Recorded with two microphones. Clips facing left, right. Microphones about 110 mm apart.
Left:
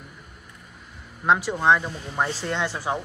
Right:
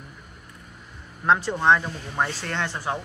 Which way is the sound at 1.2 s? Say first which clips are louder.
Even; 10° left (ahead or behind).